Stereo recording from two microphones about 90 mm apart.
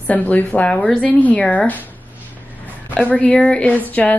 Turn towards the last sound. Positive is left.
turn(degrees=20)  # may be behind; listen again after turning